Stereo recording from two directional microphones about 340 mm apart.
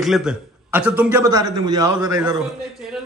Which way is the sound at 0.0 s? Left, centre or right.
Centre.